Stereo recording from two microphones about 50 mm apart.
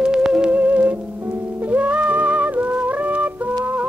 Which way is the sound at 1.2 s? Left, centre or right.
Right.